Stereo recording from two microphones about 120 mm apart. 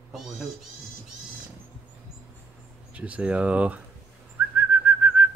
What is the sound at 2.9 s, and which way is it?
Speech, 10° right (ahead or behind).